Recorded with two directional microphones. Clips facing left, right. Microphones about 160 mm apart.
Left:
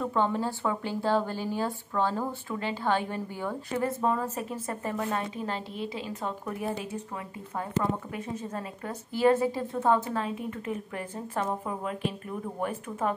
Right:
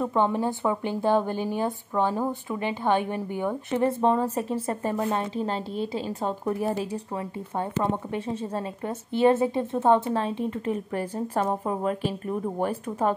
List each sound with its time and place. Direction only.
0.0 s speech: 15° right (ahead or behind); by 13.1 s 35° right (ahead or behind)